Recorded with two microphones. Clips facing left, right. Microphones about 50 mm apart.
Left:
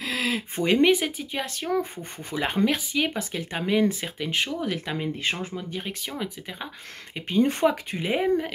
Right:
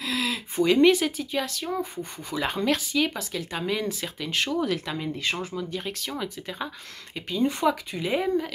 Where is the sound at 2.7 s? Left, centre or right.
Centre.